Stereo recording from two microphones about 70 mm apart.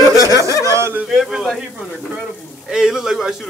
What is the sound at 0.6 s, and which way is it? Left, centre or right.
Speech, right.